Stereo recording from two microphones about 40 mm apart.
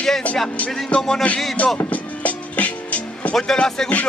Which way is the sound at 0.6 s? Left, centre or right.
Left.